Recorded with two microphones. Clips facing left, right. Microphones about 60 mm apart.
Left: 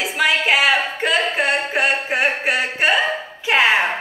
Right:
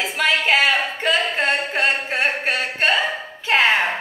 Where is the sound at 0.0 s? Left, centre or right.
Centre.